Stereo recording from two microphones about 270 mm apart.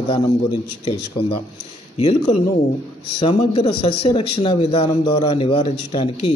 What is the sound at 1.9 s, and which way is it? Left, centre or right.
A man's voice, left.